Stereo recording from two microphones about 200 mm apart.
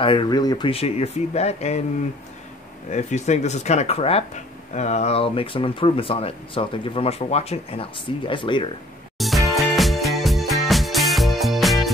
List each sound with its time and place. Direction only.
0.0 s speech: 25° left (ahead or behind)
2.9 s speech: 35° left (ahead or behind)
9.2 s music: centre (ahead or behind)